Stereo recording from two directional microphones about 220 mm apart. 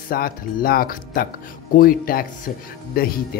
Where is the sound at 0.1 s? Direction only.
40° left (ahead or behind).